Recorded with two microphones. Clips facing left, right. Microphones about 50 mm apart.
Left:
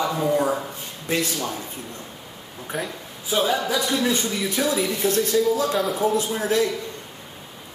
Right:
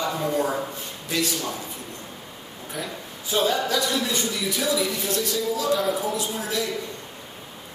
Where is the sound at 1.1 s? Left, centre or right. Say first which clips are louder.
Left 2 dB; left.